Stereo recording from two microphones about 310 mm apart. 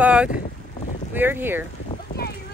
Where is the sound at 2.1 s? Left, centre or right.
Left.